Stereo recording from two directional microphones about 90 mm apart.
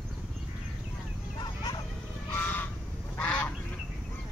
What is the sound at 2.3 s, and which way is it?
Goose, 20° left (ahead or behind).